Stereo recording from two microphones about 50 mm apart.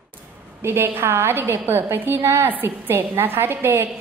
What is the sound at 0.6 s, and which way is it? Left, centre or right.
A woman's voice, right.